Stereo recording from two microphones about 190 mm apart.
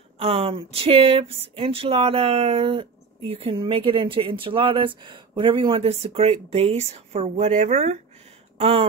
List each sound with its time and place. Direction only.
0.2 s speech: 30° right (ahead or behind)